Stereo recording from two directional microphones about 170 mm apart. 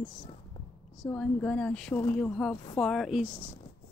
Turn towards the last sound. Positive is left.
turn(degrees=-10)  # may be behind; listen again after turning